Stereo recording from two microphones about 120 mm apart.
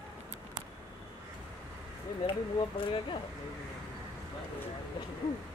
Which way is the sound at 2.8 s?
50° left (ahead or behind).